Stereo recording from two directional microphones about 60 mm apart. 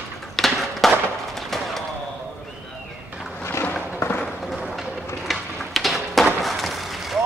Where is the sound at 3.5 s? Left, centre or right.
Left.